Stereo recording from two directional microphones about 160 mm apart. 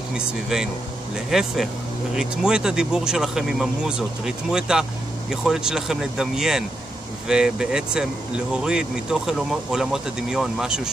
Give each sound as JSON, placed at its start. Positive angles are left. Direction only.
{"t": 1.3, "sound": "speech", "side_deg": -5}